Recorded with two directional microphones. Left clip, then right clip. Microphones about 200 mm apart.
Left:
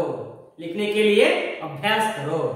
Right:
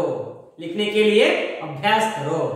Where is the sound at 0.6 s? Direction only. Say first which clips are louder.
Right 2 dB; 10° left (ahead or behind).